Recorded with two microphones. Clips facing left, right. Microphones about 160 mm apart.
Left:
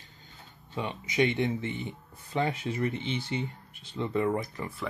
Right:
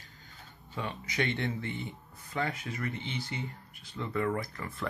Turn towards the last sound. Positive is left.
turn(degrees=20)  # may be behind; listen again after turning